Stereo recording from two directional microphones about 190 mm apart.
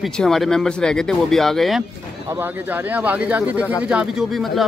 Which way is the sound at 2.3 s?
10° right (ahead or behind).